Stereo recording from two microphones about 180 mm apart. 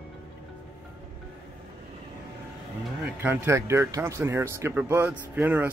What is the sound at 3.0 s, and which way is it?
Speech, 10° right (ahead or behind).